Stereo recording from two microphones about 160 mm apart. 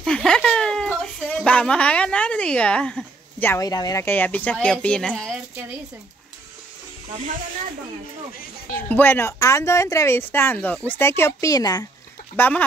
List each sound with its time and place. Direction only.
0.0 s speech: 5° left (ahead or behind)
8.7 s speech: 10° left (ahead or behind)
12.4 s speech: 10° left (ahead or behind)